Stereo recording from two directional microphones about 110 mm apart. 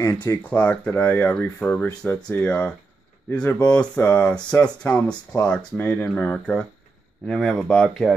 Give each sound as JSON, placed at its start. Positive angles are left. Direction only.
{"t": 0.0, "sound": "speech", "side_deg": 25}
{"t": 0.5, "sound": "speech", "side_deg": 10}
{"t": 4.0, "sound": "speech", "side_deg": 20}